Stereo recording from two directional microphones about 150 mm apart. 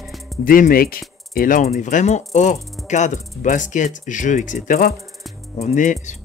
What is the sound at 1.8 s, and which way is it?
Speech, 50° left (ahead or behind).